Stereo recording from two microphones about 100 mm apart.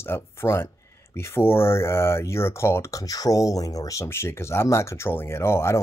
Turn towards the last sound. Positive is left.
turn(degrees=25)  # may be behind; listen again after turning